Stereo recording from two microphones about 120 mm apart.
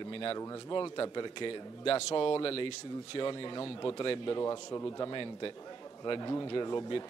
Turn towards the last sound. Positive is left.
turn(degrees=35)  # may be behind; listen again after turning